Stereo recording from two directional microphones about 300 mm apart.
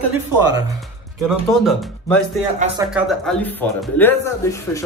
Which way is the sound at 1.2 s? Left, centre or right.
Centre.